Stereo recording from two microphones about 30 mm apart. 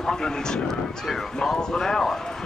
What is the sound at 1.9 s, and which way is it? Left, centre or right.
Speech, centre.